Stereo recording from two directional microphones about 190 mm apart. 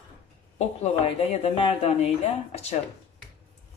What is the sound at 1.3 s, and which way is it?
Speech, 30° left (ahead or behind).